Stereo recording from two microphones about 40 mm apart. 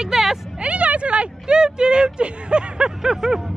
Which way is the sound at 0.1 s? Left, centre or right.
Centre.